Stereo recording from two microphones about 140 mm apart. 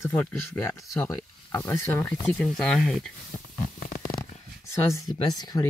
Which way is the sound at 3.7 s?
90° left.